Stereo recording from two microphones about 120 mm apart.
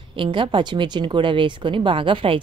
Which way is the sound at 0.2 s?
45° right (ahead or behind).